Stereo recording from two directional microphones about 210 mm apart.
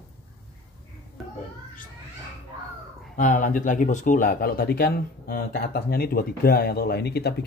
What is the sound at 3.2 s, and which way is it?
Speech, 40° left (ahead or behind).